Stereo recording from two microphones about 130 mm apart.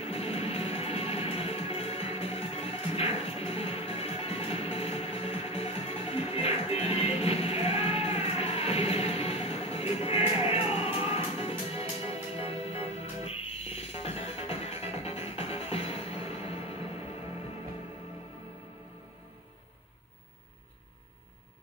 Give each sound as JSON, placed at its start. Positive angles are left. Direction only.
{"t": 0.0, "sound": "music", "side_deg": 50}